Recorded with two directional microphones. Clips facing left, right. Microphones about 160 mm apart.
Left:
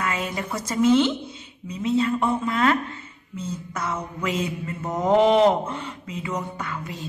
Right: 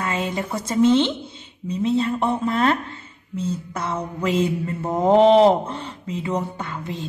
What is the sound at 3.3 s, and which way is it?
Mantra, 30° right (ahead or behind).